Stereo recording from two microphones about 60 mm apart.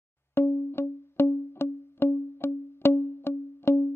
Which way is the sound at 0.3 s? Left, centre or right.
Left.